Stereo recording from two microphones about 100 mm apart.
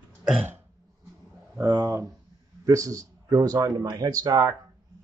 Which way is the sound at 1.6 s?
40° right (ahead or behind).